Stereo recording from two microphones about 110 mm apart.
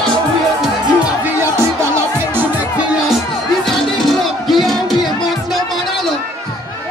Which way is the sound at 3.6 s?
5° left (ahead or behind).